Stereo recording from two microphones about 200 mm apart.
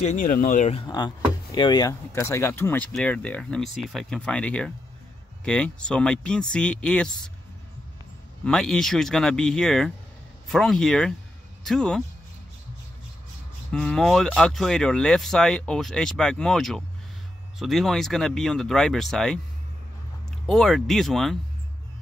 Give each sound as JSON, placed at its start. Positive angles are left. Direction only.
{"t": 0.0, "sound": "speech", "side_deg": 40}
{"t": 0.8, "sound": "speech", "side_deg": 20}
{"t": 8.5, "sound": "speech", "side_deg": 5}
{"t": 13.7, "sound": "speech", "side_deg": 5}
{"t": 20.4, "sound": "speech", "side_deg": 0}